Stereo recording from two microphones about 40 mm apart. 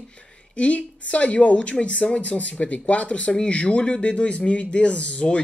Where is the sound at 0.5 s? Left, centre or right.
Left.